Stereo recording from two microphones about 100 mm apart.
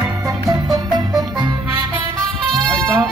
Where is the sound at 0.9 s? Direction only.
45° right (ahead or behind).